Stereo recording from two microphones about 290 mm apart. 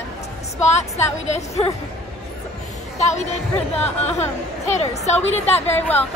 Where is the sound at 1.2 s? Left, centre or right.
Left.